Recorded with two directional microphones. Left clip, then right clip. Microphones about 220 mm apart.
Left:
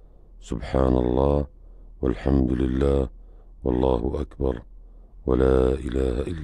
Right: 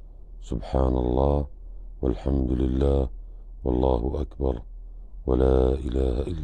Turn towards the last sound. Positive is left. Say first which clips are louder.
# left 2 dB
turn(degrees=20)  # may be behind; listen again after turning